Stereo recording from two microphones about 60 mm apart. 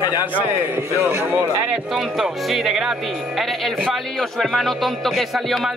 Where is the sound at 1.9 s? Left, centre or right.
Centre.